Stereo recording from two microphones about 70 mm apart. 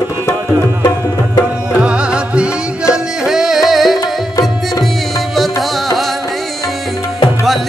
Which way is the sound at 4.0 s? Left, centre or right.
Left.